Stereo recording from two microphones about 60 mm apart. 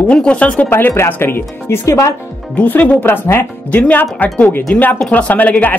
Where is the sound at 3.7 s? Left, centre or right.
Left.